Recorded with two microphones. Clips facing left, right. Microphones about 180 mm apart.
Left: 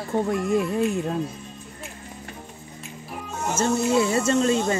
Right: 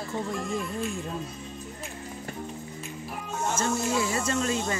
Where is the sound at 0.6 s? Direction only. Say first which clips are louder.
Left 9 dB; 70° left (ahead or behind).